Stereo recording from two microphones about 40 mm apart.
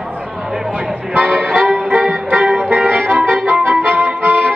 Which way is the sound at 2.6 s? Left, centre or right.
Right.